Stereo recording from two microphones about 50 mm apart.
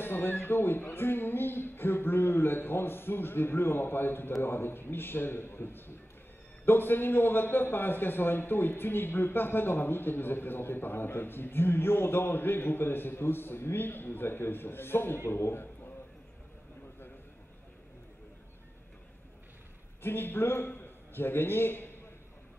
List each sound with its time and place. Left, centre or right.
0.0 s a man's voice: left
20.0 s a man's voice: left